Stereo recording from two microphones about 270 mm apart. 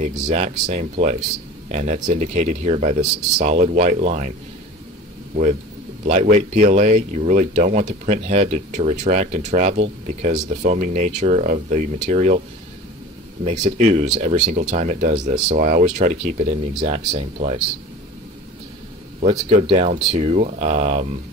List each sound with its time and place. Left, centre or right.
0.3 s speech: right
5.3 s speech: right
13.5 s speech: right
19.2 s speech: right